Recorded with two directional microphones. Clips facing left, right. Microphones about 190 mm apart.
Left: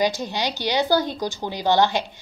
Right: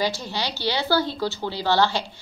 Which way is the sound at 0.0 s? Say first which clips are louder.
Left 3 dB; 20° left (ahead or behind).